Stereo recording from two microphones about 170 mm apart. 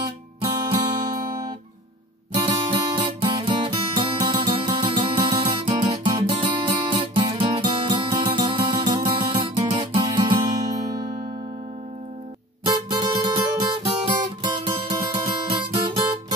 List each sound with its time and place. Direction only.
0.0 s music: 25° right (ahead or behind)
2.3 s music: 30° right (ahead or behind)
12.6 s music: 25° right (ahead or behind)